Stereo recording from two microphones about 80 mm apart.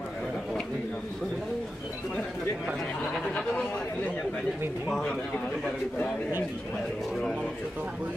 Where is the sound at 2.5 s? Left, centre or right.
Centre.